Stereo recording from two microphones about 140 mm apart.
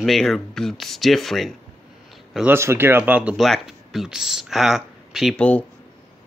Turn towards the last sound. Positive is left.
turn(degrees=10)  # may be behind; listen again after turning